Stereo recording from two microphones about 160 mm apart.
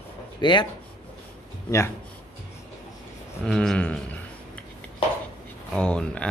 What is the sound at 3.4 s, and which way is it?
Speech, 5° left (ahead or behind).